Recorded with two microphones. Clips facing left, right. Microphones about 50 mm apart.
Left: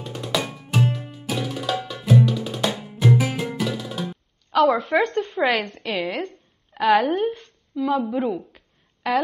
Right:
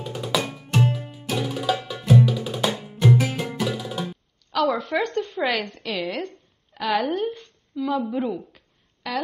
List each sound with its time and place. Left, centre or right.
0.0 s music: centre
4.5 s a woman's voice: centre
5.0 s a woman's voice: left; by 8.6 s centre